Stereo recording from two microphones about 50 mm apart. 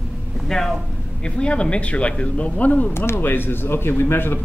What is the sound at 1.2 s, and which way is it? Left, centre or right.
Speech, left.